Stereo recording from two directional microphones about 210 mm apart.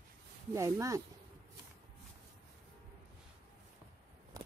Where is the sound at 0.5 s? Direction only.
15° right (ahead or behind).